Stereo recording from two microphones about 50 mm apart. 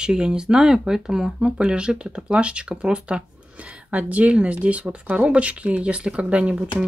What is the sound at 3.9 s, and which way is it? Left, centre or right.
Speech, right.